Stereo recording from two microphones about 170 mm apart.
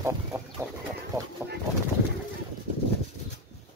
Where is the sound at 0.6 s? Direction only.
15° right (ahead or behind).